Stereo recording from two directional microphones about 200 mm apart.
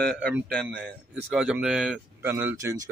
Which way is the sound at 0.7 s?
5° right (ahead or behind).